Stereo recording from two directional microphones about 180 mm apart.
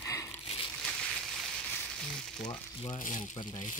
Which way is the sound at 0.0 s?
15° left (ahead or behind).